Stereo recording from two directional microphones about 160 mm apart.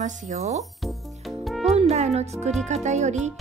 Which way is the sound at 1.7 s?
45° right (ahead or behind).